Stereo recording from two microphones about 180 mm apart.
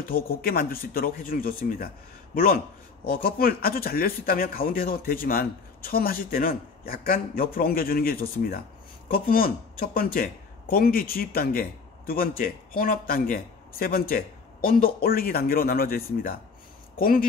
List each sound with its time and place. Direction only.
0.1 s speech: 55° left (ahead or behind)